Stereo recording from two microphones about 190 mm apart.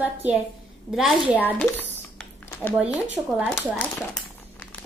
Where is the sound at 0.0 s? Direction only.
10° right (ahead or behind).